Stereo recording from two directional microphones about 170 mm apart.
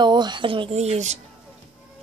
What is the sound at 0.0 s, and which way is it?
A woman's voice, 25° right (ahead or behind).